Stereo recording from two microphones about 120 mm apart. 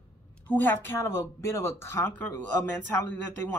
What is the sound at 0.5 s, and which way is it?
Speech, 15° left (ahead or behind).